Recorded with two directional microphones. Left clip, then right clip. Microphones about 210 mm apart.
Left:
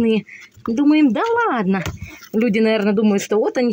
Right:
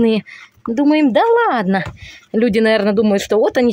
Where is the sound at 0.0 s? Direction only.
30° right (ahead or behind).